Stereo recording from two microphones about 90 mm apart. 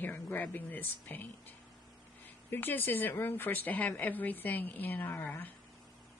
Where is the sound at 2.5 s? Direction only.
20° left (ahead or behind).